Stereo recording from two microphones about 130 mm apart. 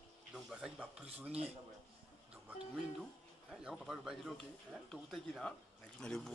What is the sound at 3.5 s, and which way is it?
Speech, centre (ahead or behind).